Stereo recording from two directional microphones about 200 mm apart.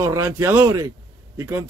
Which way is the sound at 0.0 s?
15° right (ahead or behind).